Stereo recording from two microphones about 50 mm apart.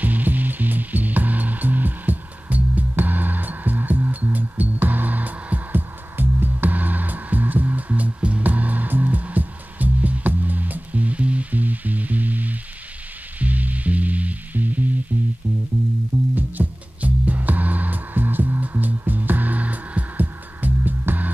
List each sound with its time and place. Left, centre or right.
0.0 s music: right
16.3 s music: right